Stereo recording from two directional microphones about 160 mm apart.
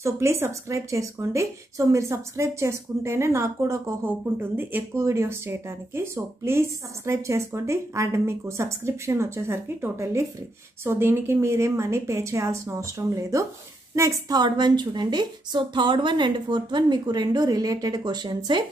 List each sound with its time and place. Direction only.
0.0 s a woman's voice: 15° right (ahead or behind)